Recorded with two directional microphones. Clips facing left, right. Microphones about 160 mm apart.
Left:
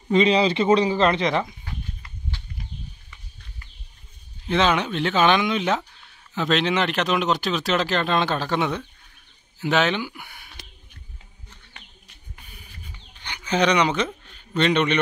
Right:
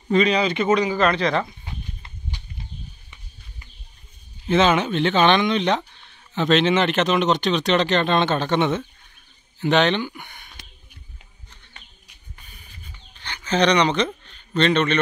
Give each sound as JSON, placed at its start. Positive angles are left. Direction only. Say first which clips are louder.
{"t": 0.1, "sound": "speech", "louder": "left 1 dB", "side_deg": 25}
{"t": 1.6, "sound": "a sound", "louder": "even", "side_deg": -25}
{"t": 4.5, "sound": "speech", "louder": "right 3 dB", "side_deg": 0}
{"t": 13.2, "sound": "speech", "louder": "right 2 dB", "side_deg": 10}